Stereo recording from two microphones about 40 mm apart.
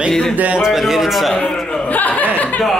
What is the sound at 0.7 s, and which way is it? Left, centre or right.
Speech, centre.